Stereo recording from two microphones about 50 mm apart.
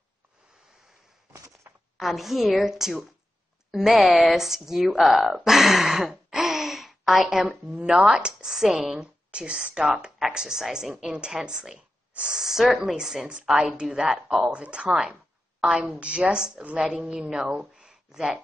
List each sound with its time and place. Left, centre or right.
1.3 s a sound: right
2.0 s a woman's voice: centre
4.0 s a woman's voice: centre
7.4 s a woman's voice: right
7.8 s speech: centre
9.3 s speech: right
10.1 s speech: centre